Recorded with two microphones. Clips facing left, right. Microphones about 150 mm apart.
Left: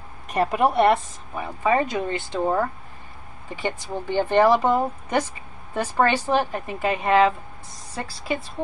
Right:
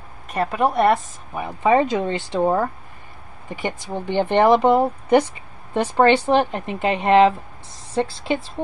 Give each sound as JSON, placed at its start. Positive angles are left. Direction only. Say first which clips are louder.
{"t": 0.5, "sound": "a woman's voice", "louder": "right 1 dB", "side_deg": 10}
{"t": 1.3, "sound": "a woman's voice", "louder": "right 4 dB", "side_deg": -15}